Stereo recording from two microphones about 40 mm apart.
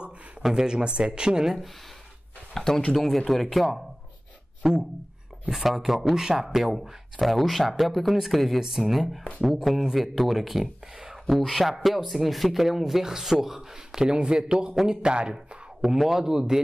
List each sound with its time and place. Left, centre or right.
0.4 s speech: centre
2.5 s speech: centre
2.9 s speech: centre
4.6 s speech: centre
5.5 s speech: centre
8.5 s speech: centre
15.3 s speech: centre